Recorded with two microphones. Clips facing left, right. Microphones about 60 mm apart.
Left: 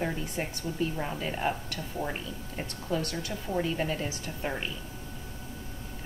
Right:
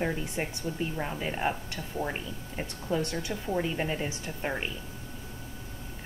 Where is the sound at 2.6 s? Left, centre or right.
Right.